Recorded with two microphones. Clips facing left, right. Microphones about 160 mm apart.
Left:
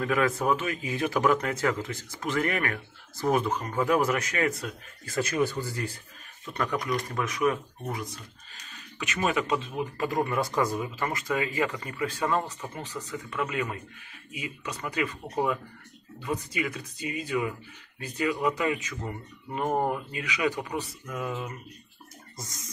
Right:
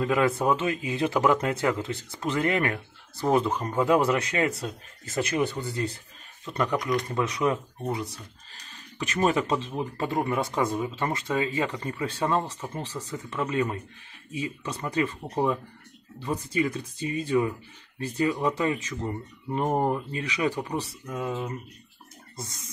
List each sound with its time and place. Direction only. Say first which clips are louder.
0.0 s speech: right 2 dB; 25° right (ahead or behind)